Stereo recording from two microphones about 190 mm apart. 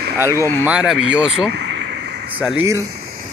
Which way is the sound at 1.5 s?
65° right (ahead or behind).